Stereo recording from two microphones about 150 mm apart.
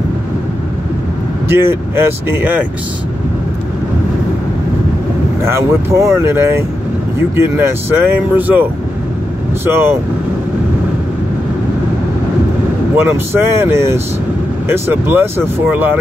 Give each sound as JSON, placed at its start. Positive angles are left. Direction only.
{"t": 1.6, "sound": "speech", "side_deg": -15}
{"t": 5.4, "sound": "speech", "side_deg": -20}
{"t": 9.7, "sound": "speech", "side_deg": -15}
{"t": 12.9, "sound": "speech", "side_deg": -15}